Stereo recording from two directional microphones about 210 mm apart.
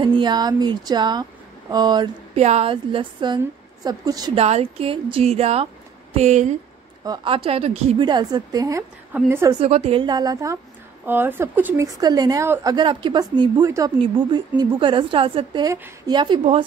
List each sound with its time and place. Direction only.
0.0 s a woman's voice: 20° right (ahead or behind)
4.4 s a woman's voice: 30° right (ahead or behind); by 9.6 s 10° right (ahead or behind)
9.6 s a woman's voice: 30° right (ahead or behind)